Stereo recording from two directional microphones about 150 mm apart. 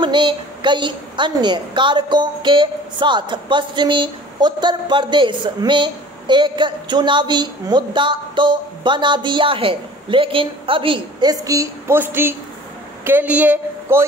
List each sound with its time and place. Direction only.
0.0 s a woman's voice: 30° right (ahead or behind); by 14.0 s 15° right (ahead or behind)